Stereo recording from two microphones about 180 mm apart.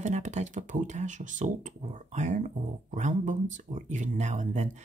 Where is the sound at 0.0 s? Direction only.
40° right (ahead or behind).